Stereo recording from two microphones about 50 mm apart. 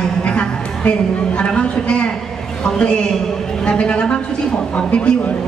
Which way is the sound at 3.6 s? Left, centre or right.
Left.